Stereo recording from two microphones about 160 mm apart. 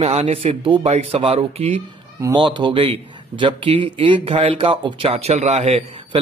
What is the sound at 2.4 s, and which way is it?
A man's voice, 30° right (ahead or behind).